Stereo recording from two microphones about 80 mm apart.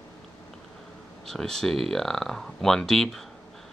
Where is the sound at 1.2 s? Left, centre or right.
Centre.